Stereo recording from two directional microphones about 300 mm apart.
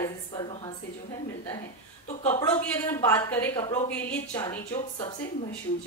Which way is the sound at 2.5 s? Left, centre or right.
Centre.